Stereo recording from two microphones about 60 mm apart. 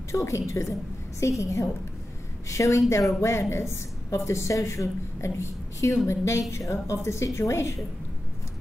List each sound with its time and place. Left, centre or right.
0.1 s a woman's voice: left